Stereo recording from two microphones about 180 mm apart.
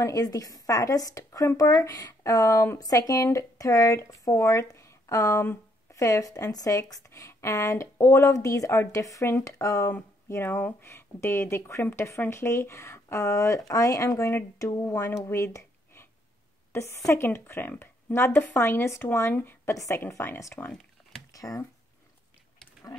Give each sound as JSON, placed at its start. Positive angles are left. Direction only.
{"t": 0.0, "sound": "speech", "side_deg": 20}
{"t": 15.2, "sound": "a sound", "side_deg": 15}
{"t": 16.7, "sound": "speech", "side_deg": 15}
{"t": 21.3, "sound": "speech", "side_deg": 20}